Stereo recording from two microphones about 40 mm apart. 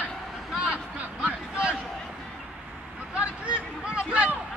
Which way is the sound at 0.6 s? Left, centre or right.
Right.